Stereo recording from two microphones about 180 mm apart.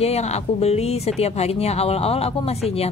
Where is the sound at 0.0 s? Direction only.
35° left (ahead or behind).